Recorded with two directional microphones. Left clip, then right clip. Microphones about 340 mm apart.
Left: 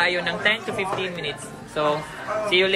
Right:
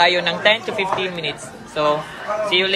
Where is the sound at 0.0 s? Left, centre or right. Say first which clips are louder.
Right 6 dB; centre.